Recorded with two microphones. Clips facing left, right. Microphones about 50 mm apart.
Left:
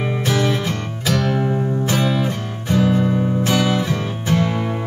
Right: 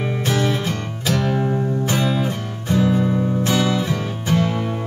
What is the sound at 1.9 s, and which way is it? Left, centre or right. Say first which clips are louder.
Music: left 2 dB; left.